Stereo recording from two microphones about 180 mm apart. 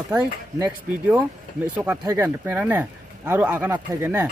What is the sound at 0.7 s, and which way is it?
Speech, 5° right (ahead or behind).